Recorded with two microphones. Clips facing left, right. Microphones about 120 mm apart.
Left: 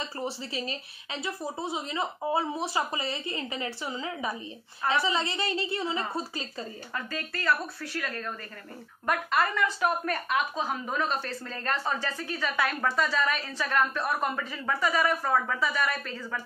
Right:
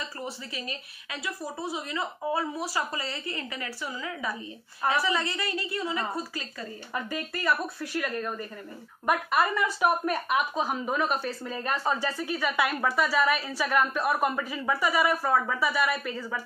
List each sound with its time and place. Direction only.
0.2 s a woman's voice: 30° left (ahead or behind)
6.9 s speech: 15° right (ahead or behind)